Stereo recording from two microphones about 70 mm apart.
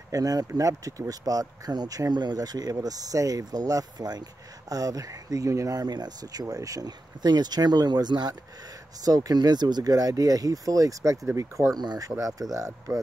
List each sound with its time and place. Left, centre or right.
0.1 s speech: right
5.8 s speech: right
6.4 s speech: right
9.0 s speech: right
11.8 s speech: right
12.1 s speech: right